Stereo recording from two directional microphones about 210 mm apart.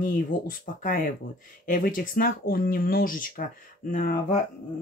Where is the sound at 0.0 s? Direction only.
40° left (ahead or behind).